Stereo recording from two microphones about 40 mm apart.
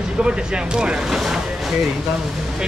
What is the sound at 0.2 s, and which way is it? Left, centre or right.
Speech, right.